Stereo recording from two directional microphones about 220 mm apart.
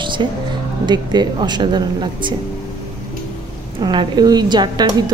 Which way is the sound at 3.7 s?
20° right (ahead or behind).